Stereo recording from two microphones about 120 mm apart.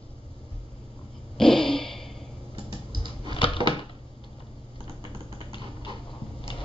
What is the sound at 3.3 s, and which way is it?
Crushing, 50° left (ahead or behind).